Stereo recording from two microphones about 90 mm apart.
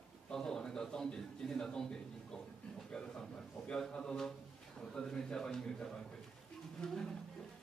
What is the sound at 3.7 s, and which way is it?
A man's voice, 10° left (ahead or behind).